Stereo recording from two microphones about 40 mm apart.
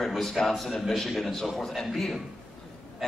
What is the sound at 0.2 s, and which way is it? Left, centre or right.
A man's voice, centre.